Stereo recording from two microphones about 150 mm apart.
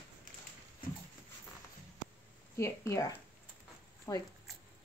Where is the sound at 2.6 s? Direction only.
20° left (ahead or behind).